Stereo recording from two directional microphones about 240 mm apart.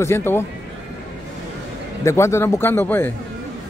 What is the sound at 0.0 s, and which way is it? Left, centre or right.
Speech, centre.